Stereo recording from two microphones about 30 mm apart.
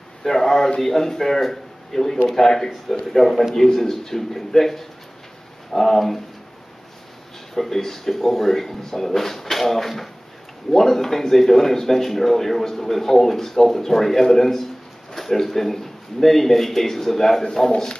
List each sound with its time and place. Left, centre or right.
0.2 s a man's voice: centre
7.5 s speech: centre
17.6 s speech: left